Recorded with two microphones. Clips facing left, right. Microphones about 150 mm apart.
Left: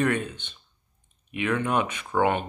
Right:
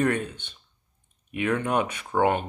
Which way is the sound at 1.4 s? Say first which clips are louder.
Even; 45° right (ahead or behind).